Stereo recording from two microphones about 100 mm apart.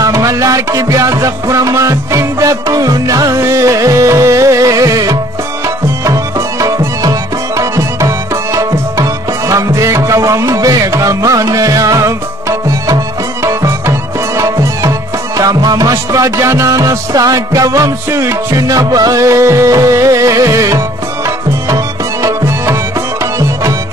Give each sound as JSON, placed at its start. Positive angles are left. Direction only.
{"t": 0.0, "sound": "music", "side_deg": -30}
{"t": 8.5, "sound": "tabla", "side_deg": -35}
{"t": 21.6, "sound": "music", "side_deg": -30}